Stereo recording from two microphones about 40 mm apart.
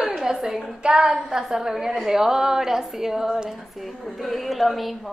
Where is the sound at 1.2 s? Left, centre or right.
Centre.